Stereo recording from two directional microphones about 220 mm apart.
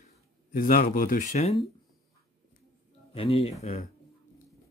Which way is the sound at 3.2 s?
25° left (ahead or behind).